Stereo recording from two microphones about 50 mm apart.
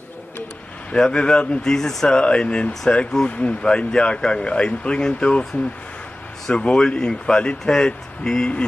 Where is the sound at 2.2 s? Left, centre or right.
Centre.